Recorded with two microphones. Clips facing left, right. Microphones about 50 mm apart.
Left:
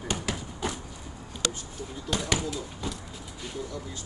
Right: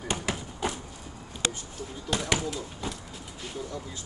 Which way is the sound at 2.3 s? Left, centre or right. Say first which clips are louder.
Even; right.